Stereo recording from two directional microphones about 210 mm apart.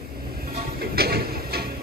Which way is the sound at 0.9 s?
50° right (ahead or behind).